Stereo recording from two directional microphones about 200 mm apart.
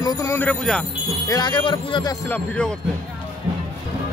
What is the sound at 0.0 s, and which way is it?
Speech, 15° left (ahead or behind).